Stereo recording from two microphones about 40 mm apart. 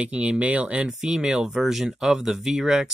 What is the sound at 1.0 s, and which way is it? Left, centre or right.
Speech, centre.